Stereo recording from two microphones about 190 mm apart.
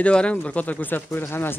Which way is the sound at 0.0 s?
5° left (ahead or behind).